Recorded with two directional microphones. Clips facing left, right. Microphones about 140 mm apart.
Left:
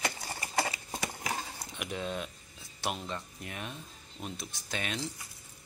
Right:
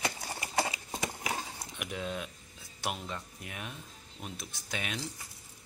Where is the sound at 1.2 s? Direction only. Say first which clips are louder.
Even; 5° right (ahead or behind).